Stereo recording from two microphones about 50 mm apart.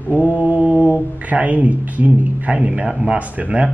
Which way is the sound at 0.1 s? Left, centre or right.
Right.